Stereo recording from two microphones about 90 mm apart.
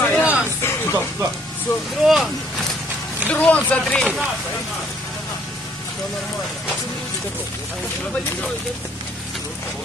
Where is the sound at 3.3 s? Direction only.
15° left (ahead or behind).